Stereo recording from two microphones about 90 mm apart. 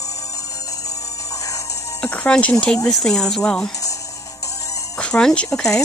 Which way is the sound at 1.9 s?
15° left (ahead or behind).